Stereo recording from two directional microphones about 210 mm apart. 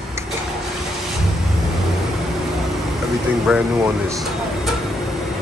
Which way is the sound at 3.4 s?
5° right (ahead or behind).